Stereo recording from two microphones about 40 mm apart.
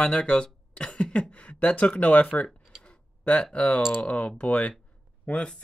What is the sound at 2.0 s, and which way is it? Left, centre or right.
Speech, left.